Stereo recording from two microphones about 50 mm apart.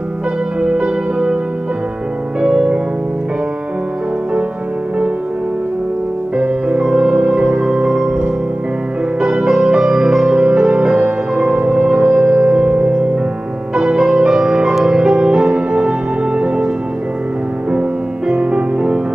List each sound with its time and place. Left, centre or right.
0.6 s music: centre
2.4 s music: centre
6.3 s music: centre
9.5 s music: centre